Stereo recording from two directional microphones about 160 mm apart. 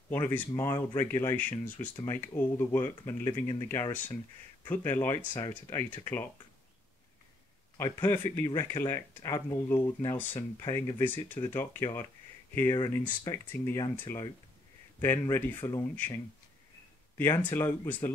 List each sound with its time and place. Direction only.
0.1 s speech: 15° left (ahead or behind)
4.6 s speech: 15° left (ahead or behind)
7.7 s speech: 15° left (ahead or behind)
10.6 s speech: 25° left (ahead or behind)
11.0 s speech: 10° left (ahead or behind)
12.6 s speech: 30° left (ahead or behind)
17.2 s speech: 15° left (ahead or behind)